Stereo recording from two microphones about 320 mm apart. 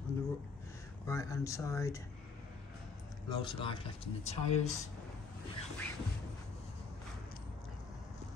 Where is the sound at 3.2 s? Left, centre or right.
Centre.